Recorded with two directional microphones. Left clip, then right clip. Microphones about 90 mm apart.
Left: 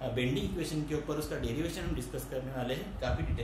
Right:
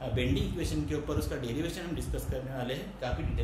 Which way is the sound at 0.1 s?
20° right (ahead or behind).